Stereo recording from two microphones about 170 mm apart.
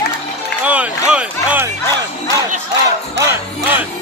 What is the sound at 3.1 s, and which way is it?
Music, 15° right (ahead or behind).